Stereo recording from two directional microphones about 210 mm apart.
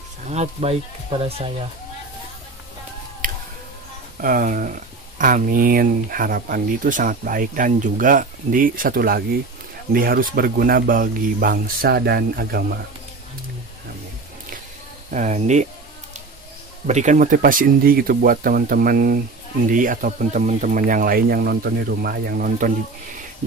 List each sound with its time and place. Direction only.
0.3 s speech: 30° right (ahead or behind)
3.2 s a sound: 40° right (ahead or behind)
4.2 s speech: 40° right (ahead or behind)
15.0 s speech: 35° right (ahead or behind)
16.8 s speech: 35° right (ahead or behind)